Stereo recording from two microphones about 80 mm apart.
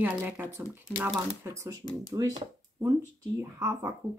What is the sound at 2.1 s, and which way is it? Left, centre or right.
Speech, right.